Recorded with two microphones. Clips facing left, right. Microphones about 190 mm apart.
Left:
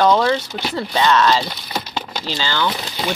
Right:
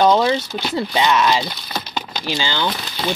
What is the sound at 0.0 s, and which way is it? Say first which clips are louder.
Speech: even; 20° right (ahead or behind).